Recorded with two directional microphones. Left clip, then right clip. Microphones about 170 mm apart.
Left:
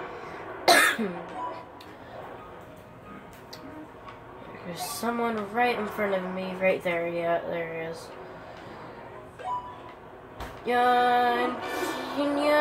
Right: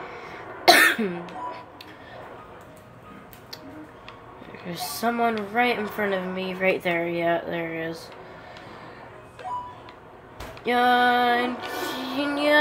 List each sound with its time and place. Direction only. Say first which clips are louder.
0.3 s cough: right 4 dB; 60° right (ahead or behind)
4.6 s speech: right 4 dB; 60° right (ahead or behind)
9.5 s music: even; centre (ahead or behind)
10.6 s speech: right 3 dB; 60° right (ahead or behind)
12.0 s music: right 2 dB; 60° right (ahead or behind)